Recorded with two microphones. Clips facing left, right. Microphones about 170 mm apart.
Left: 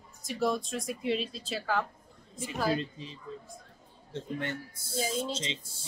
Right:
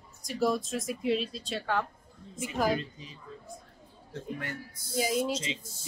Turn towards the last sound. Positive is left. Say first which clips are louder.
# right 2 dB
turn(degrees=30)  # may be behind; listen again after turning